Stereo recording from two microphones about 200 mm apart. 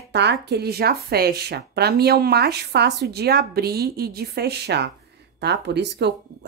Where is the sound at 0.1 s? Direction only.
60° right (ahead or behind).